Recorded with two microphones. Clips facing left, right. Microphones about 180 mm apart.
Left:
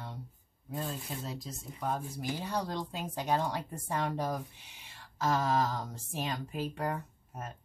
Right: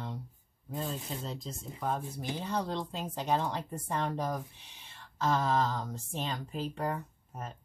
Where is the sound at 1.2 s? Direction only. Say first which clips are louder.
Right 1 dB; 5° left (ahead or behind).